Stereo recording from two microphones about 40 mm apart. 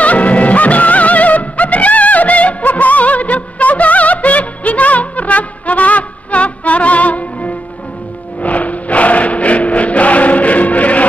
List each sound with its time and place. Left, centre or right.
0.0 s music: left
8.4 s choir: left